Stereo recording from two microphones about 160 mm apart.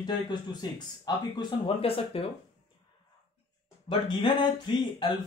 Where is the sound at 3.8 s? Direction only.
30° left (ahead or behind).